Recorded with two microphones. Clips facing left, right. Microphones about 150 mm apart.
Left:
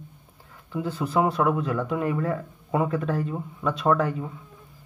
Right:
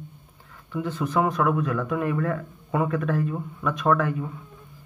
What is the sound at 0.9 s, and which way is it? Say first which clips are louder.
Speech: left 1 dB; 30° left (ahead or behind).